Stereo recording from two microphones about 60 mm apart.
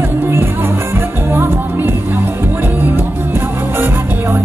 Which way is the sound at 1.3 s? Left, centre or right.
Right.